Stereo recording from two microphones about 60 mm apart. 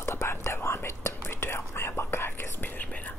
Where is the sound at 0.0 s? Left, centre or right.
Left.